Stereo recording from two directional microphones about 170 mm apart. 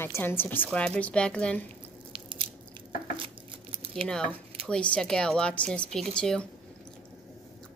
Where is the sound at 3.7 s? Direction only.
35° right (ahead or behind).